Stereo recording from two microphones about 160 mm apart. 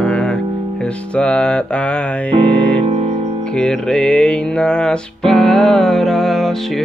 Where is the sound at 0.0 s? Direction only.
5° left (ahead or behind).